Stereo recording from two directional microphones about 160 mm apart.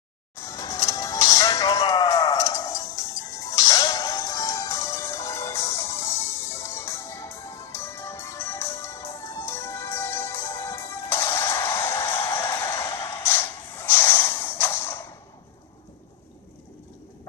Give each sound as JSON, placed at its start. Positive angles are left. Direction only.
{"t": 0.4, "sound": "music", "side_deg": 20}